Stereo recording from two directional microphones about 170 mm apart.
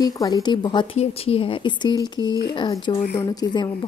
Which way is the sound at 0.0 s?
20° left (ahead or behind).